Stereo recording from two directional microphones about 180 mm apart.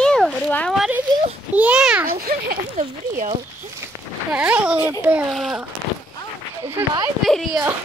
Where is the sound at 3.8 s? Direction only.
15° right (ahead or behind).